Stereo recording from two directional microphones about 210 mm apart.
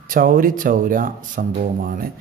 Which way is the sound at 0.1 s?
40° right (ahead or behind).